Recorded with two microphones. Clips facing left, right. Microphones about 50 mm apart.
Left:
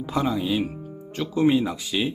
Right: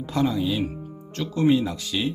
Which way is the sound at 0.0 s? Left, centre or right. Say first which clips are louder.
Right 1 dB; centre.